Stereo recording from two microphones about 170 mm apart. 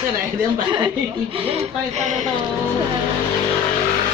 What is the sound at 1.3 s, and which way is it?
Speech, 40° right (ahead or behind).